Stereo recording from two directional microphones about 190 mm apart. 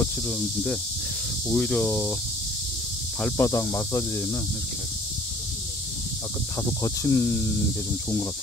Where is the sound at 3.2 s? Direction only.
10° left (ahead or behind).